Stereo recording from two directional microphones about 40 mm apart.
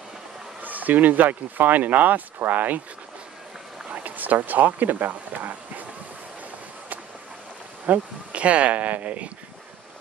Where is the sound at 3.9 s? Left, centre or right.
Right.